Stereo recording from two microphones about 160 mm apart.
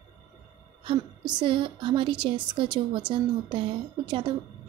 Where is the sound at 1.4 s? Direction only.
30° right (ahead or behind).